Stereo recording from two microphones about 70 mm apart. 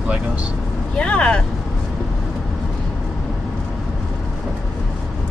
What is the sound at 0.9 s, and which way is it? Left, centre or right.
Speech, centre.